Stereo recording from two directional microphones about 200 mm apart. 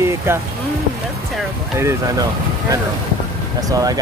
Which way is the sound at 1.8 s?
15° right (ahead or behind).